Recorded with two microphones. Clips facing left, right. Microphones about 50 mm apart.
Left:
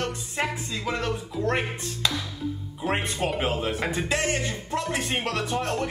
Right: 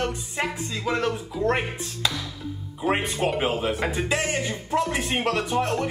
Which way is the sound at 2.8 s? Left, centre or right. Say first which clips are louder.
Right 3 dB; centre.